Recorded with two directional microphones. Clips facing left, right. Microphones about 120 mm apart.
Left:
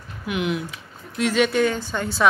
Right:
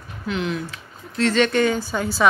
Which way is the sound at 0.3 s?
15° left (ahead or behind).